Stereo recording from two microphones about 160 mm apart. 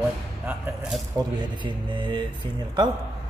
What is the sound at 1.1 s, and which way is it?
Speech, 30° right (ahead or behind).